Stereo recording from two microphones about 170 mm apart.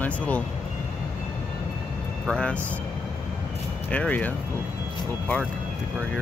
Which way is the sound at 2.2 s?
5° left (ahead or behind).